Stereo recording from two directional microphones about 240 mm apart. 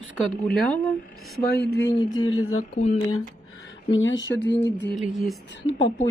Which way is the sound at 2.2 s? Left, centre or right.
Left.